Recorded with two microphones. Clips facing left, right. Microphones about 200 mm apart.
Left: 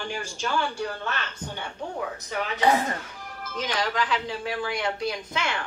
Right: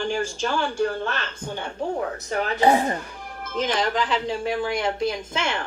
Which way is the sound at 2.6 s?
30° right (ahead or behind).